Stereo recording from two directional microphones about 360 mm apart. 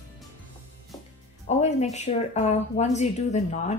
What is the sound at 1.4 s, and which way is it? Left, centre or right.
Speech, centre.